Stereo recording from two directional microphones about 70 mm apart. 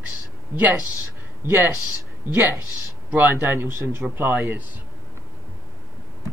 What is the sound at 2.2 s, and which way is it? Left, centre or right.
Speech, left.